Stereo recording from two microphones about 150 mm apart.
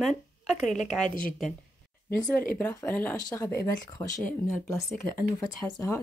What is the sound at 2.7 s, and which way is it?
Speech, 15° left (ahead or behind).